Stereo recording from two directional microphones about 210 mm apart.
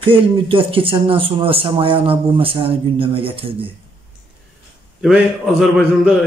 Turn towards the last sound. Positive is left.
turn(degrees=0)  # may be behind; listen again after turning